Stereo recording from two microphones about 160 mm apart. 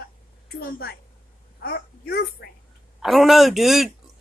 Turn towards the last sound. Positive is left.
turn(degrees=0)  # may be behind; listen again after turning